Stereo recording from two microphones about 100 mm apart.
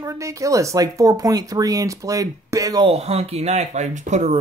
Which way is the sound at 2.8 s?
85° right.